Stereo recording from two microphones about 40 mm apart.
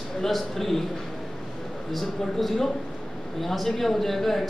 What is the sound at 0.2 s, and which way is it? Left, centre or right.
Speech, centre.